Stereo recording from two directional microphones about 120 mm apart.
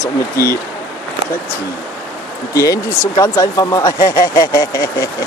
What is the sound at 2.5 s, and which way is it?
Speech, 25° left (ahead or behind).